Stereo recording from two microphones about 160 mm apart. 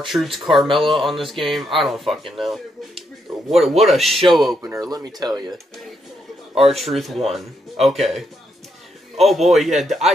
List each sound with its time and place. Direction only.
0.1 s speech: centre (ahead or behind)
4.6 s speech: 20° right (ahead or behind)
6.7 s speech: centre (ahead or behind)